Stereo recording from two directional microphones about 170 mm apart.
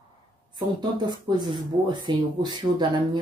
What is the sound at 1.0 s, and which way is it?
Speech, 25° right (ahead or behind).